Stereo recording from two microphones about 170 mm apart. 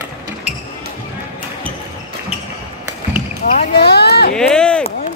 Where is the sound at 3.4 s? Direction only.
60° left (ahead or behind).